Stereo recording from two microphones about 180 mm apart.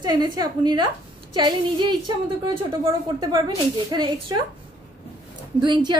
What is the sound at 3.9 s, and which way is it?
Speech, 25° right (ahead or behind).